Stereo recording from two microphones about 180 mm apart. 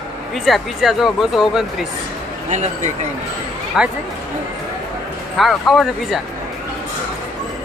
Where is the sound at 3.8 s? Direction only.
5° right (ahead or behind).